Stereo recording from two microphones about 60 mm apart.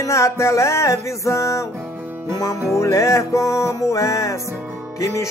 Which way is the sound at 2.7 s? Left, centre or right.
Left.